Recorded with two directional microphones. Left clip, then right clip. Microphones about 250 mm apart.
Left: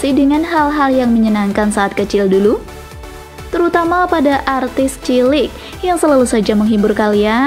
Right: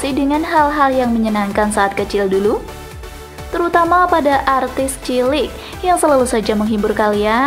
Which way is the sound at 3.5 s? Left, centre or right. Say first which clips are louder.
Even; centre.